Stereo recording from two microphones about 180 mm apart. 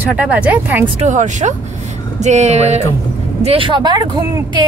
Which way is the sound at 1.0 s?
45° right (ahead or behind).